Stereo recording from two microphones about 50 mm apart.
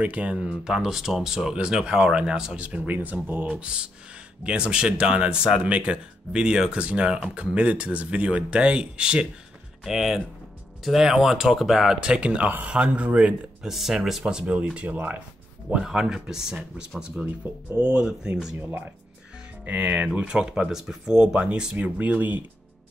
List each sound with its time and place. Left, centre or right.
0.0 s speech: right
2.9 s speech: right
3.4 s speech: centre
12.1 s speech: right
13.6 s speech: centre
14.4 s speech: right
15.7 s speech: centre
18.6 s speech: right
19.6 s speech: right
20.2 s speech: centre; by 22.4 s right